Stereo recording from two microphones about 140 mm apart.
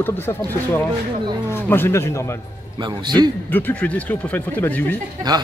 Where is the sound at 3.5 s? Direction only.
15° left (ahead or behind).